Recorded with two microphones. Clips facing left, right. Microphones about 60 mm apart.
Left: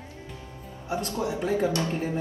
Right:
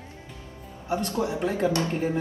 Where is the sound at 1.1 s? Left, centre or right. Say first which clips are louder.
Left 2 dB; right.